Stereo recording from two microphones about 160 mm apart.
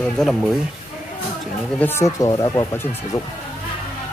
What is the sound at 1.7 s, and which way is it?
Speech, 15° left (ahead or behind).